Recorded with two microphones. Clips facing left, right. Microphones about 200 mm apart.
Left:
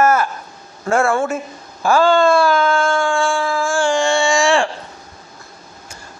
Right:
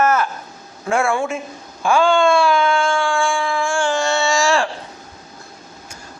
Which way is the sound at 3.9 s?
15° left (ahead or behind).